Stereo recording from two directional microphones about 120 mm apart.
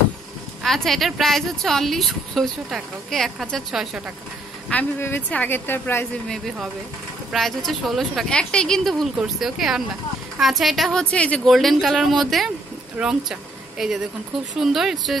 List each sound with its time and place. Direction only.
0.6 s speech: centre (ahead or behind)
4.6 s a woman's voice: 15° left (ahead or behind)
6.2 s speech: 5° left (ahead or behind)
11.4 s speech: centre (ahead or behind)